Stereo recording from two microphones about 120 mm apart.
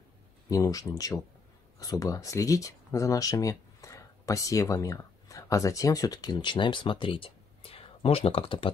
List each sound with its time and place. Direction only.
0.5 s speech: 30° left (ahead or behind); by 8.7 s 50° left (ahead or behind)